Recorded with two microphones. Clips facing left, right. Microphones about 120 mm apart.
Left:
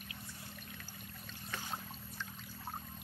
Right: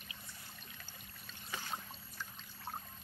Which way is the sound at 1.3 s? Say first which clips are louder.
Even; 5° right (ahead or behind).